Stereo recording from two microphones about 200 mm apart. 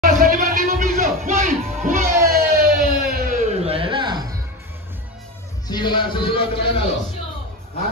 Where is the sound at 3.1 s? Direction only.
50° right (ahead or behind).